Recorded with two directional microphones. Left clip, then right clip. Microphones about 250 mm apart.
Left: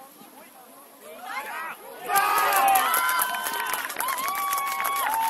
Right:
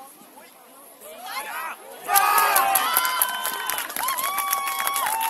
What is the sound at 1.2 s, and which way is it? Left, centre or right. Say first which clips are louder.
Crowd: right 2 dB; right.